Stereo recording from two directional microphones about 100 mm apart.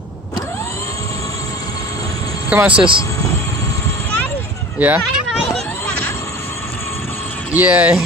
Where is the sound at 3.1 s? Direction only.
30° left (ahead or behind).